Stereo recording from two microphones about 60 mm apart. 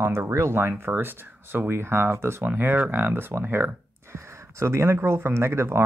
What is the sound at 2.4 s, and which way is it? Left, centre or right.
Speech, right.